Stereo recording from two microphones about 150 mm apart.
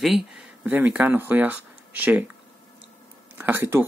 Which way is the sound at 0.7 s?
10° right (ahead or behind).